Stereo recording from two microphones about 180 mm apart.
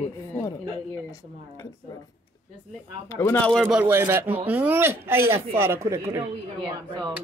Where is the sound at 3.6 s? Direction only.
10° right (ahead or behind).